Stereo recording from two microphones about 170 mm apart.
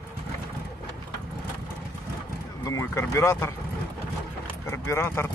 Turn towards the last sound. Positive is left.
turn(degrees=15)  # may be behind; listen again after turning